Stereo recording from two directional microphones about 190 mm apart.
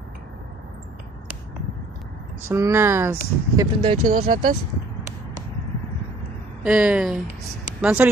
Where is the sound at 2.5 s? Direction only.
15° right (ahead or behind).